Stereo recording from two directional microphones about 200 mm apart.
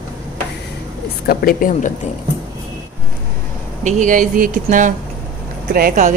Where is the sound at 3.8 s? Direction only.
40° right (ahead or behind).